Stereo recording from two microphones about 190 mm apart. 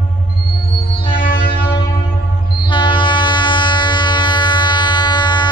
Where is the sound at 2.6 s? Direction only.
25° left (ahead or behind).